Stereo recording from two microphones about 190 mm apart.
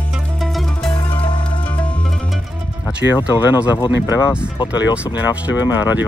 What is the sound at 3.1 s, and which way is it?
Speech, 25° left (ahead or behind).